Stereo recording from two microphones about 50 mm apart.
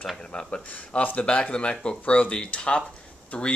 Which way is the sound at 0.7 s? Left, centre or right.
Left.